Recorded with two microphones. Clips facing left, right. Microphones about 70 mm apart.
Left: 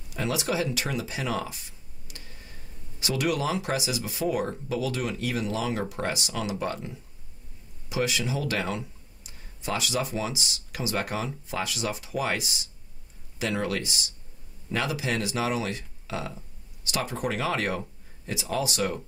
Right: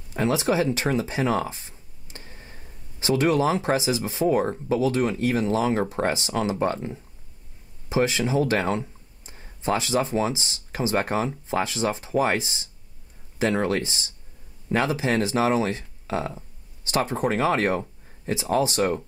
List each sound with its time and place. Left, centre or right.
0.1 s speech: right